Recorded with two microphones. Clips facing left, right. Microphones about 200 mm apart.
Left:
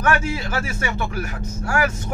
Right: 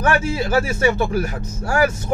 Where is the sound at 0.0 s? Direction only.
30° right (ahead or behind).